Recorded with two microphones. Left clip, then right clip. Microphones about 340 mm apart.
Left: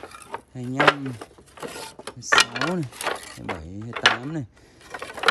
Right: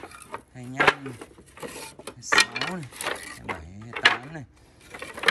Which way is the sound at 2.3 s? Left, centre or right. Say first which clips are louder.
Left 3 dB; centre.